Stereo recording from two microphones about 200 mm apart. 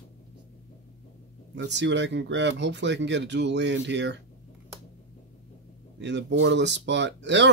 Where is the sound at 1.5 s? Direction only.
60° right (ahead or behind).